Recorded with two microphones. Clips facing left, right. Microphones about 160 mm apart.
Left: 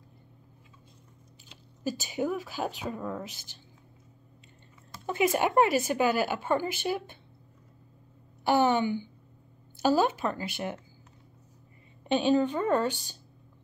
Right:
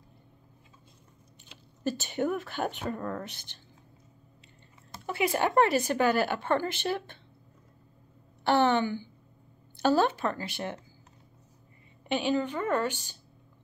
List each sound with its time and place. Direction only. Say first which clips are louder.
1.9 s speech: right 1 dB; 5° left (ahead or behind)
5.0 s a woman's voice: left 2 dB; 20° left (ahead or behind)
8.5 s a sound: even; 10° left (ahead or behind)
9.8 s a woman's voice: even; 10° left (ahead or behind)
12.3 s a woman's voice: left 4 dB; 20° left (ahead or behind)